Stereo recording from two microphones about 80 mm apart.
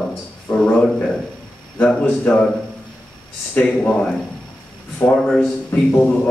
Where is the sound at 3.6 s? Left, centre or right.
Centre.